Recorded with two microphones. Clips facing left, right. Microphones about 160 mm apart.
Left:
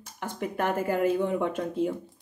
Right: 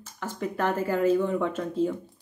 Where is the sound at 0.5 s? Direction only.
15° left (ahead or behind).